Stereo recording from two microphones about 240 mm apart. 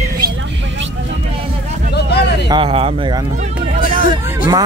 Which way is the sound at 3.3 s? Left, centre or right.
Right.